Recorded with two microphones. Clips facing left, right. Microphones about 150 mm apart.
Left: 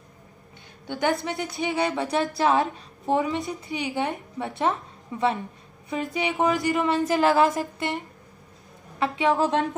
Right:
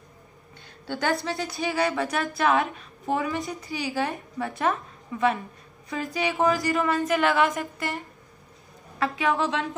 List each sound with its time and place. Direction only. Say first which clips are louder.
0.8 s a woman's voice: left 1 dB; 20° left (ahead or behind)
7.1 s a woman's voice: left 4 dB; 35° left (ahead or behind)
9.0 s a woman's voice: left 2 dB; 25° left (ahead or behind)
9.4 s speech: left 4 dB; 45° left (ahead or behind)